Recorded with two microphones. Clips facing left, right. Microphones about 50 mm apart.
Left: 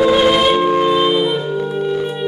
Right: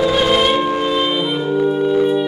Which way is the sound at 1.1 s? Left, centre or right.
Centre.